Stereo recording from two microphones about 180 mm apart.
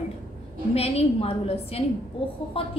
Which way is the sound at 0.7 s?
35° left (ahead or behind).